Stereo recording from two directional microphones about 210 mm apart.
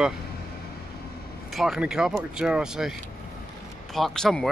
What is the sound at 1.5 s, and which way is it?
Speech, centre (ahead or behind).